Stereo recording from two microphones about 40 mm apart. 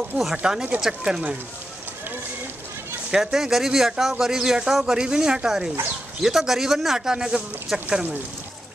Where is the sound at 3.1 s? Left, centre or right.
Centre.